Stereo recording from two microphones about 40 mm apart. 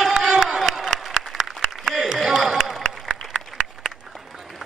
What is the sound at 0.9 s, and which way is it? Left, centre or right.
Applause, centre.